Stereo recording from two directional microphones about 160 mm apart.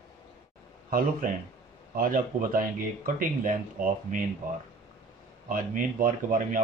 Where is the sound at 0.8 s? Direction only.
65° right (ahead or behind).